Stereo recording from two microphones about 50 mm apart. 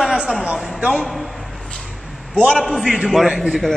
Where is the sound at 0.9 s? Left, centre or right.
Centre.